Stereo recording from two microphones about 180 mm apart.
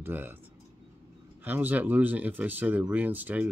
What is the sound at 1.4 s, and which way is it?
Speech, 10° right (ahead or behind).